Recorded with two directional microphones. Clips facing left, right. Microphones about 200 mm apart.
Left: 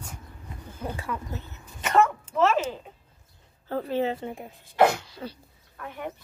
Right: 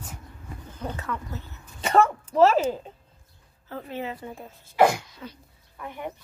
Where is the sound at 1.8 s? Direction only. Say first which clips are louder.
Right 1 dB; 30° right (ahead or behind).